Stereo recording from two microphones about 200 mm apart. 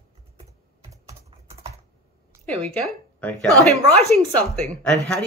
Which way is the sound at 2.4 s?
5° left (ahead or behind).